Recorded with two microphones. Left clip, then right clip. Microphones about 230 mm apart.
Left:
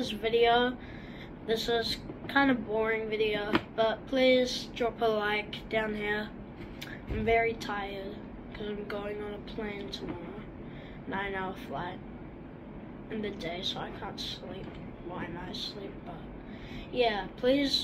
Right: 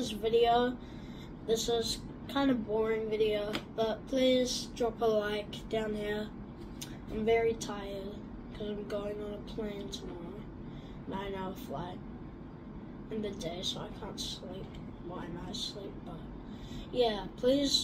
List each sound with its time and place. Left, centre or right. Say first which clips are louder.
0.0 s speech: left 2 dB; centre
7.2 s speech: left 2 dB; centre
11.1 s speech: left 5 dB; centre
13.2 s speech: left 3 dB; centre
16.9 s speech: left 2 dB; centre